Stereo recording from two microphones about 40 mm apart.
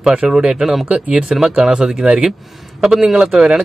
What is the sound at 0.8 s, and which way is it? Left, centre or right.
Speech, right.